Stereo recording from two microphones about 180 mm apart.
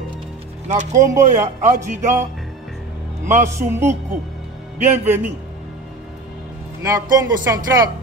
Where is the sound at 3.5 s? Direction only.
15° right (ahead or behind).